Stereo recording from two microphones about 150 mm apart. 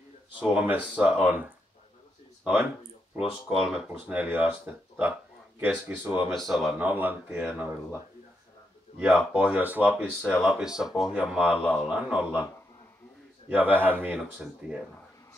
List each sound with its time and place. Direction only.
0.4 s speech: 10° right (ahead or behind)
2.4 s speech: 15° right (ahead or behind)
3.2 s speech: centre (ahead or behind)
13.5 s speech: 10° right (ahead or behind)